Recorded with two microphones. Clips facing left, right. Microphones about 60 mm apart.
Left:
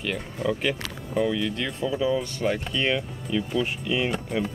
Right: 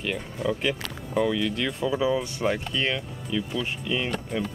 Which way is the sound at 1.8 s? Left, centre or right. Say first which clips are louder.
Even; centre.